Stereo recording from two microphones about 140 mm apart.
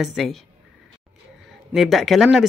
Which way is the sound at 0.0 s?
Centre (ahead or behind).